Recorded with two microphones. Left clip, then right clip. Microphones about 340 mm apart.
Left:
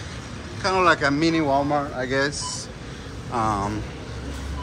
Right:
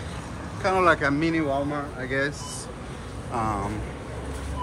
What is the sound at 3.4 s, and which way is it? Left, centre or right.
Speech, centre.